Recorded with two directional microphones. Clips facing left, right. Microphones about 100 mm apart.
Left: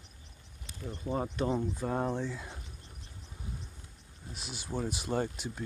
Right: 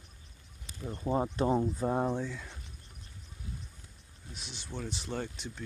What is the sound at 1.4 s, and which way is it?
Speech, 30° right (ahead or behind).